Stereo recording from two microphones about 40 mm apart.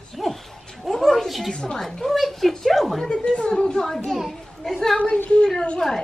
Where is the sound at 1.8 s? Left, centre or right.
Centre.